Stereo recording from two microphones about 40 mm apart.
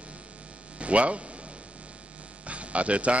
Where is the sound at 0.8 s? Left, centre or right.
Right.